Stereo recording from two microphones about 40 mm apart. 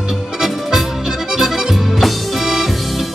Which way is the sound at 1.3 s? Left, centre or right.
Centre.